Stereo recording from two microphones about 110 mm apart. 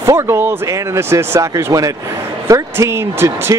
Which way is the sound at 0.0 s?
25° right (ahead or behind).